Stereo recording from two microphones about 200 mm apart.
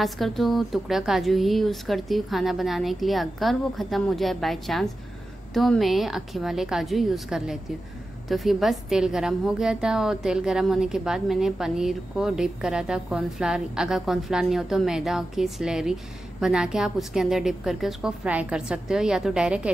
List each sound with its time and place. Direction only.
0.0 s a woman's voice: centre (ahead or behind)